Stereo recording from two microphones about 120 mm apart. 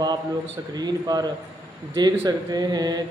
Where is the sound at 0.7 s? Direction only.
35° right (ahead or behind).